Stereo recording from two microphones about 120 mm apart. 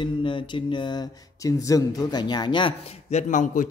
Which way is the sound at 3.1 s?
90° left.